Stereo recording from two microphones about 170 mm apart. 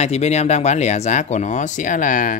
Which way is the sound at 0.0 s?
40° left (ahead or behind).